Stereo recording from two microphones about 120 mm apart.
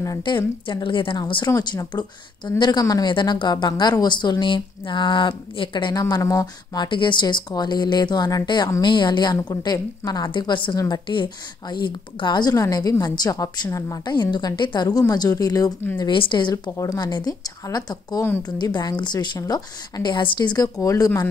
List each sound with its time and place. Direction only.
0.2 s a woman's voice: 40° left (ahead or behind)
16.0 s a woman's voice: 40° left (ahead or behind)
16.7 s a woman's voice: 30° left (ahead or behind)